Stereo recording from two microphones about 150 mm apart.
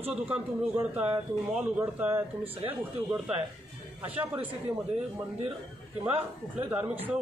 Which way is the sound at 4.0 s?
10° right (ahead or behind).